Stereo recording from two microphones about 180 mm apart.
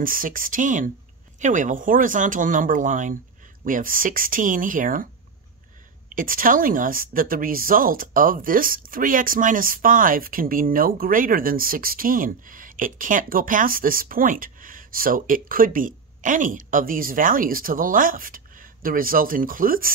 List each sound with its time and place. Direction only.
0.0 s a woman's voice: 50° right (ahead or behind)
6.1 s a woman's voice: 50° right (ahead or behind)